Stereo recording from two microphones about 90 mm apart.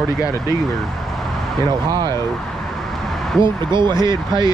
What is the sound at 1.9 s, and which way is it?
Speech, 50° right (ahead or behind).